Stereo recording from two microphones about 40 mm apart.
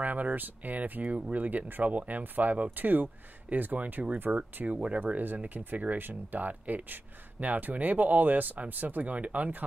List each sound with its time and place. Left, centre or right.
0.0 s speech: right
4.3 s speech: right
5.0 s speech: right